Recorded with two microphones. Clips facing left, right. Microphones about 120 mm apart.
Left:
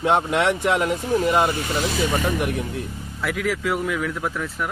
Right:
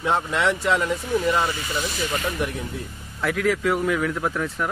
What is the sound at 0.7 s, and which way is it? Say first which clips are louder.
Speech: left 2 dB; 15° left (ahead or behind).